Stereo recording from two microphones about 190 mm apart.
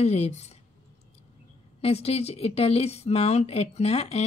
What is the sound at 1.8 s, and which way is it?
Speech, 30° left (ahead or behind).